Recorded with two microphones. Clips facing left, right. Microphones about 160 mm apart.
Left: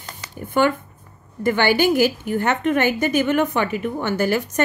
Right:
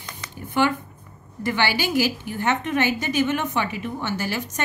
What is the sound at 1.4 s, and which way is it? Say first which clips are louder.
A woman's voice: left 7 dB; 50° left (ahead or behind).